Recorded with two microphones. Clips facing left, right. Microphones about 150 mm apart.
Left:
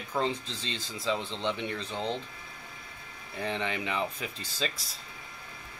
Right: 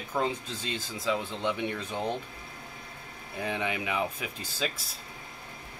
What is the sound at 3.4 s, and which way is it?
Speech, 10° right (ahead or behind).